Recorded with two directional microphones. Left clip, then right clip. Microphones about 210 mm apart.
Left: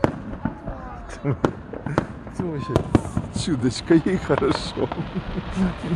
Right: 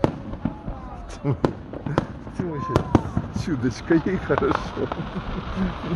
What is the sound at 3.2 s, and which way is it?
Basketball bounce, 35° left (ahead or behind).